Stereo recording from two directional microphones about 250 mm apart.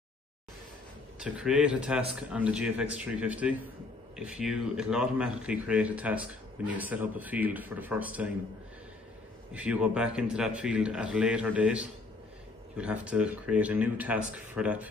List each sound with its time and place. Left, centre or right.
1.2 s speech: centre
9.5 s speech: centre